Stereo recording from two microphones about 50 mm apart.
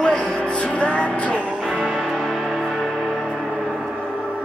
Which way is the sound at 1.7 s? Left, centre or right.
Centre.